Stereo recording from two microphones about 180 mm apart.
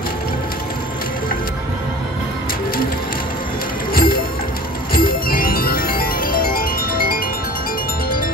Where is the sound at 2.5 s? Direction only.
55° left (ahead or behind).